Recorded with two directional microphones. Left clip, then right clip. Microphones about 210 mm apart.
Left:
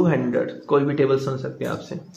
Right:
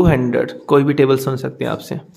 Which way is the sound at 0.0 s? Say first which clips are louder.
Right 5 dB; 55° right (ahead or behind).